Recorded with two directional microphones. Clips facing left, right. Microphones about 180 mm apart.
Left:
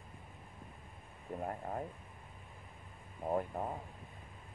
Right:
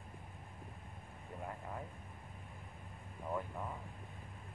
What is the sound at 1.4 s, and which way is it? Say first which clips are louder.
Speech: left 6 dB; 45° left (ahead or behind).